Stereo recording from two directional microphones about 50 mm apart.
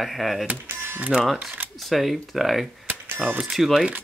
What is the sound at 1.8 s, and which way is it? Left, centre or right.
Speech, centre.